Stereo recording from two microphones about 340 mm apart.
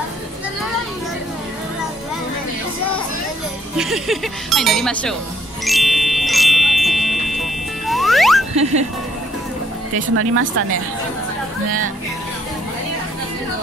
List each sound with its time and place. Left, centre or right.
3.7 s speech: centre
5.7 s music: centre
10.1 s speech: right